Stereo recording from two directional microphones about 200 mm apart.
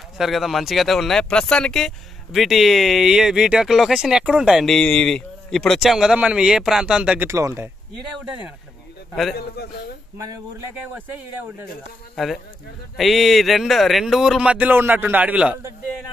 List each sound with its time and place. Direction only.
0.2 s speech: centre (ahead or behind)
9.6 s a man's voice: 50° left (ahead or behind)
12.9 s speech: centre (ahead or behind)